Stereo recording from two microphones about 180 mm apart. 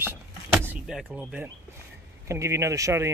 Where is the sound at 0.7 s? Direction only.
5° right (ahead or behind).